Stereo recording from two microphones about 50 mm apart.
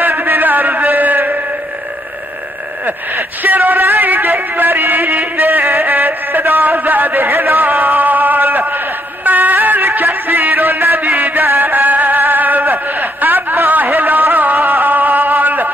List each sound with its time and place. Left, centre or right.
0.0 s a sound: right
2.8 s speech: right
4.0 s music: right
5.9 s chant: right
6.8 s speech: right
7.2 s a sound: right
10.2 s music: right